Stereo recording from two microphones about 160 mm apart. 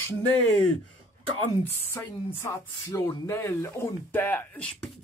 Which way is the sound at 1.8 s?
15° left (ahead or behind).